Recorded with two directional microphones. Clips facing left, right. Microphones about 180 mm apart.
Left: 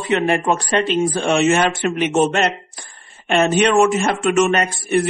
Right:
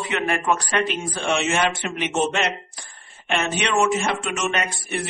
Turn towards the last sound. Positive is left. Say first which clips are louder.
# left 8 dB
turn(degrees=45)  # may be behind; listen again after turning